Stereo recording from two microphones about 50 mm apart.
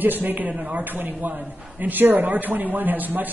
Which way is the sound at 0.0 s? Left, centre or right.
Right.